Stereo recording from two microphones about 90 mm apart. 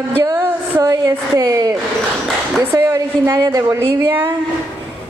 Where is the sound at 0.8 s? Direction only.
40° right (ahead or behind).